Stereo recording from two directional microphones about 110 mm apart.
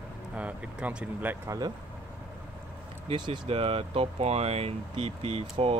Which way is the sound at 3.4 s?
55° right (ahead or behind).